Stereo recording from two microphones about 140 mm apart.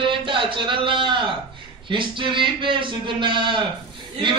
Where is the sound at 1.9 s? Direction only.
35° right (ahead or behind).